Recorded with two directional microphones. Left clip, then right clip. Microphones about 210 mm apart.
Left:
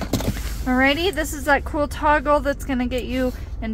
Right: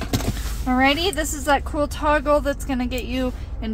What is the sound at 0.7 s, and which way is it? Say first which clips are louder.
Speech: even; centre (ahead or behind).